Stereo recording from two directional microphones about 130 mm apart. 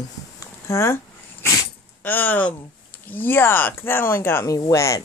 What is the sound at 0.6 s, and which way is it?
Dog, 20° left (ahead or behind).